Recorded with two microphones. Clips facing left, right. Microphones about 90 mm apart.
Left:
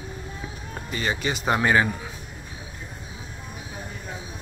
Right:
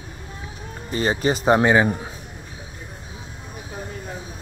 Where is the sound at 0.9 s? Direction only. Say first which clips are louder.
Right 6 dB; 35° right (ahead or behind).